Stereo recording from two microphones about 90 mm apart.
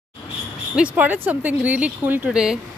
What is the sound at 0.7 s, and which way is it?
Speech, 15° right (ahead or behind).